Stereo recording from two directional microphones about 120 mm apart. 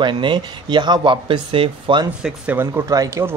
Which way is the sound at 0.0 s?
40° right (ahead or behind).